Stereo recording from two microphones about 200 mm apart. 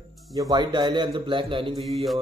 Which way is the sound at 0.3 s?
20° right (ahead or behind).